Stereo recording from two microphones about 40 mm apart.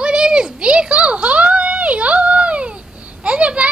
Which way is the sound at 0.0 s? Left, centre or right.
Right.